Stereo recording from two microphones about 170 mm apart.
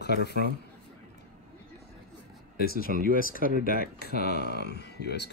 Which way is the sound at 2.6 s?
65° left (ahead or behind).